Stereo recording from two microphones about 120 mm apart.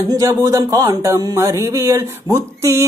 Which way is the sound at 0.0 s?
30° right (ahead or behind).